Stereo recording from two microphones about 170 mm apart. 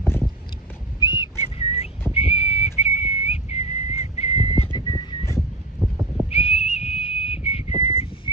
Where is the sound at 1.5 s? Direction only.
35° left (ahead or behind).